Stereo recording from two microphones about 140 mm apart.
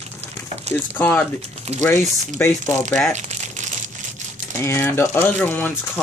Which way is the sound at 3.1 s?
55° right (ahead or behind).